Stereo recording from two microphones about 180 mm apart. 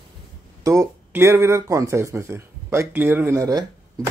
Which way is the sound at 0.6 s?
15° right (ahead or behind).